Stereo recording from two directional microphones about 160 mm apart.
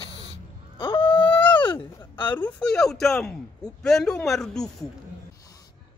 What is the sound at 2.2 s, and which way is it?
Speech, 10° left (ahead or behind).